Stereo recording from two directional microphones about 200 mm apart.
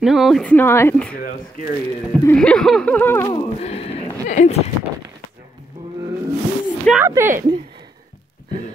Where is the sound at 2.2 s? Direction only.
5° left (ahead or behind).